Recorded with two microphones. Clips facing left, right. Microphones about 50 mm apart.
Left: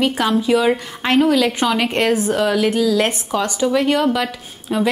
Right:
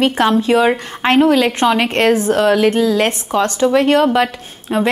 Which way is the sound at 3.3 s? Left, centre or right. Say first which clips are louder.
Right 5 dB; centre.